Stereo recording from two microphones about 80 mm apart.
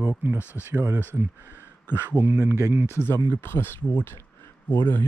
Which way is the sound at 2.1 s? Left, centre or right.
Right.